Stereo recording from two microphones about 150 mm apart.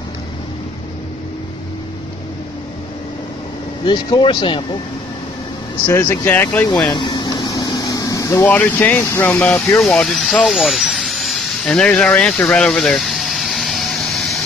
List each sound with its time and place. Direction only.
3.8 s speech: 30° left (ahead or behind)
5.9 s speech: 15° left (ahead or behind)
6.9 s air conditioning: 30° left (ahead or behind)
8.5 s speech: 15° left (ahead or behind)
10.8 s vehicle: centre (ahead or behind)